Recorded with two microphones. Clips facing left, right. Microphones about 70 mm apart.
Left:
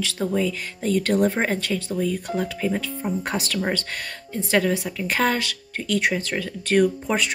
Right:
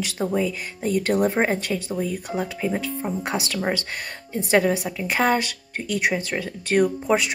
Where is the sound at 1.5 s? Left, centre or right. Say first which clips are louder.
Even; centre.